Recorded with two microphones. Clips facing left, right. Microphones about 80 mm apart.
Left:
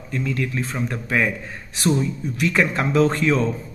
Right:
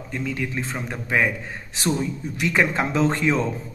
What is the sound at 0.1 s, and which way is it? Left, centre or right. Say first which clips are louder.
Speech: left 3 dB; centre.